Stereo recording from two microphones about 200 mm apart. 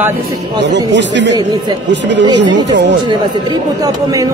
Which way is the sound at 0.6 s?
60° right (ahead or behind).